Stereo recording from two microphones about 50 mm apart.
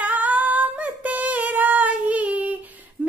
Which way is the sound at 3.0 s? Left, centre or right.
Right.